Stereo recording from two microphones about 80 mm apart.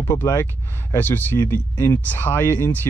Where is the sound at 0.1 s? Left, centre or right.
Left.